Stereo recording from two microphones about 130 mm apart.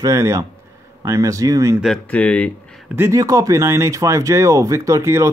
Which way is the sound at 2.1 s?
10° left (ahead or behind).